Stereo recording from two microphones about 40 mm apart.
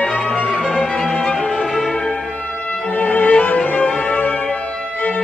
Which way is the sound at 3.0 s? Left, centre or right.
Left.